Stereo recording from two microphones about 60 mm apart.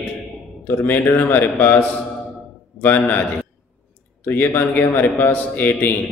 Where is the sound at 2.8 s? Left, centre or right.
Left.